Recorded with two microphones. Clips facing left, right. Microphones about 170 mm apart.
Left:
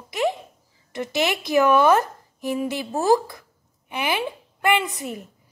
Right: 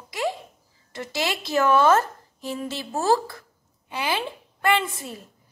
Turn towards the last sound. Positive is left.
turn(degrees=15)  # may be behind; listen again after turning